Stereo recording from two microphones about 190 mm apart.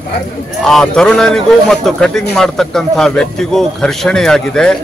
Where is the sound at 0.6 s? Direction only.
Centre (ahead or behind).